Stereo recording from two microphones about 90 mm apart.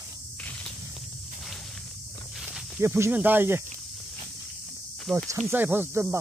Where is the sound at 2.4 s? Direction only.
Centre (ahead or behind).